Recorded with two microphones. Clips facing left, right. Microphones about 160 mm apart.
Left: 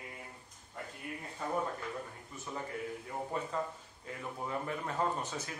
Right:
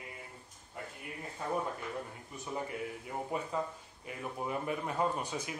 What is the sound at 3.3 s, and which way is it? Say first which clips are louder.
A man's voice: right 1 dB; 10° right (ahead or behind).